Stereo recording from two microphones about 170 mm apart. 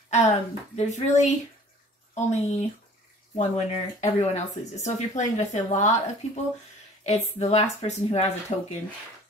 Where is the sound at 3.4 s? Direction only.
45° left (ahead or behind).